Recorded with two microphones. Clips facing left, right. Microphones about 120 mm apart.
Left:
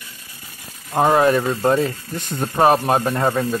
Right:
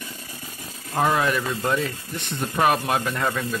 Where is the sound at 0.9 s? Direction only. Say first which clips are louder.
Left 6 dB; 35° left (ahead or behind).